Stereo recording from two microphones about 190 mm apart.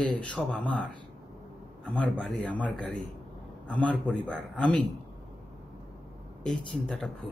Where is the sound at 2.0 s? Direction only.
5° left (ahead or behind).